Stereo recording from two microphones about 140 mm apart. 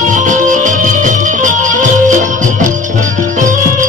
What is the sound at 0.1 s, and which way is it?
Music, 65° right (ahead or behind).